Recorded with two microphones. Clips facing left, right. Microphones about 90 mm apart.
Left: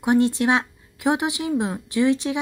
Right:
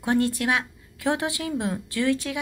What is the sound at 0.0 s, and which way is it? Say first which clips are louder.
A woman's voice: left 4 dB; 20° left (ahead or behind).